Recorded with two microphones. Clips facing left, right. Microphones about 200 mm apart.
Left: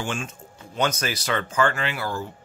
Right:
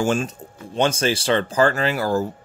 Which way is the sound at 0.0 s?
40° right (ahead or behind).